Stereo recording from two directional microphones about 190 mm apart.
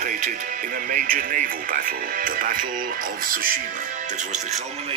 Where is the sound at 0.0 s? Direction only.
45° right (ahead or behind).